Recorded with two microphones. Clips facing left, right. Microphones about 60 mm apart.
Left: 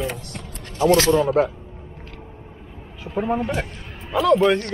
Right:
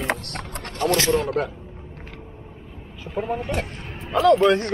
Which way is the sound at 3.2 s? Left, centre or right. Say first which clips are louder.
Left 3 dB; centre.